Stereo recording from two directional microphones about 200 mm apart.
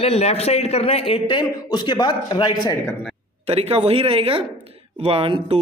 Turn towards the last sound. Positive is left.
turn(degrees=-25)  # may be behind; listen again after turning